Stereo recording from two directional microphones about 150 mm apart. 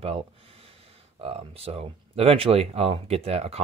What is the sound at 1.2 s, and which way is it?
Speech, 40° right (ahead or behind).